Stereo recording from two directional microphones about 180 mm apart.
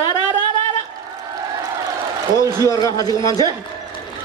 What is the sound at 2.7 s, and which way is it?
Speech, 20° left (ahead or behind).